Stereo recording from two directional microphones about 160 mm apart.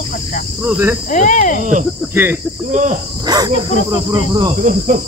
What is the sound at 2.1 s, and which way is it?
Speech, 15° right (ahead or behind).